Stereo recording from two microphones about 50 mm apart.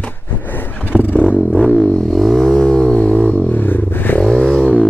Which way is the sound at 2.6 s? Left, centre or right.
Centre.